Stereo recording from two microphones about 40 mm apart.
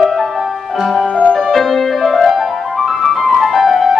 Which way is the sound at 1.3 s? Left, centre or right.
Centre.